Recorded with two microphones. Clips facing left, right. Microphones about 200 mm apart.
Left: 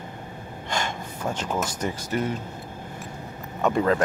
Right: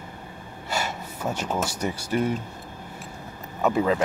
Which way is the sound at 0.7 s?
10° right (ahead or behind).